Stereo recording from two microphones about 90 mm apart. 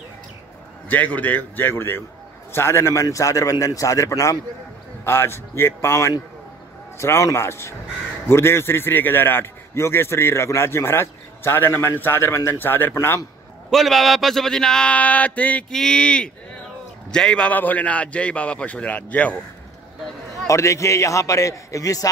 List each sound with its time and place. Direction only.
0.8 s a man's voice: 20° left (ahead or behind); by 4.4 s 35° left (ahead or behind)
5.0 s a man's voice: 25° left (ahead or behind)
13.7 s a man's voice: centre (ahead or behind)
15.7 s a man's voice: 5° left (ahead or behind)
20.4 s a man's voice: 35° left (ahead or behind)